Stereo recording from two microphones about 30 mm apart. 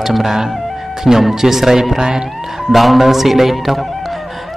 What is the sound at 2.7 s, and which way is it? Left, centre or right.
Speech, centre.